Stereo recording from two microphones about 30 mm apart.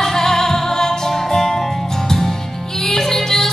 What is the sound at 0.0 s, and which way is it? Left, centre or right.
Music, centre.